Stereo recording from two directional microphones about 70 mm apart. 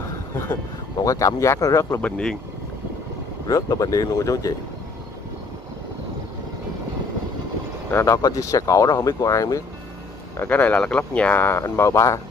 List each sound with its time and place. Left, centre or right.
1.0 s speech: left
2.0 s speech: centre
3.4 s speech: left
7.9 s speech: left
10.4 s speech: left